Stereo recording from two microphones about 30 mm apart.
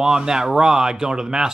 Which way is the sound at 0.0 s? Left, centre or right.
Right.